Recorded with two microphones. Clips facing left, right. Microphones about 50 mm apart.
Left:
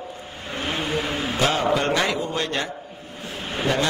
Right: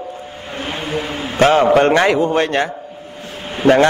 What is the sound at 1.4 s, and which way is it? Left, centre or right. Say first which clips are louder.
A man's voice: right 11 dB; right.